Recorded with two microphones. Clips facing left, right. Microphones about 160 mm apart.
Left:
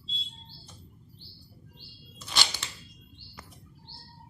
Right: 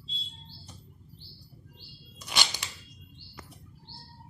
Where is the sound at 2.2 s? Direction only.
15° right (ahead or behind).